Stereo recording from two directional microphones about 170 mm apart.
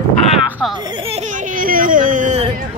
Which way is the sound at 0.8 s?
30° right (ahead or behind).